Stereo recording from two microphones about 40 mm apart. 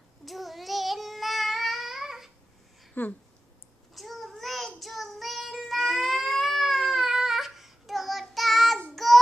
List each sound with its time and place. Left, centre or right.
0.2 s child singing: centre
3.0 s speech: left
3.9 s child singing: centre